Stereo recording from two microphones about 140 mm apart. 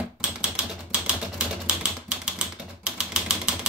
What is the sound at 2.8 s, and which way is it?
Typing, 5° right (ahead or behind).